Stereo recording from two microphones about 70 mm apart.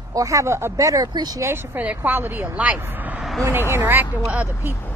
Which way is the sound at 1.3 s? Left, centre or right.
Right.